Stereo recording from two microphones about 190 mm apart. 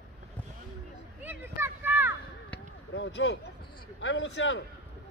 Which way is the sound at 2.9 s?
70° left (ahead or behind).